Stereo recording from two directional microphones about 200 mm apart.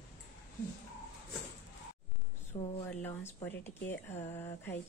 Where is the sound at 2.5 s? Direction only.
15° left (ahead or behind).